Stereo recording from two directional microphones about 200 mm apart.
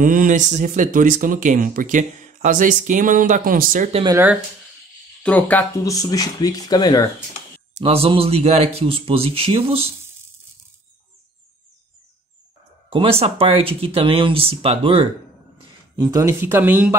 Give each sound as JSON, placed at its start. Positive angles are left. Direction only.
{"t": 0.0, "sound": "speech", "side_deg": -40}
{"t": 3.9, "sound": "speech", "side_deg": -20}
{"t": 5.2, "sound": "speech", "side_deg": 10}
{"t": 7.7, "sound": "speech", "side_deg": -30}
{"t": 12.9, "sound": "speech", "side_deg": -30}
{"t": 16.0, "sound": "speech", "side_deg": -15}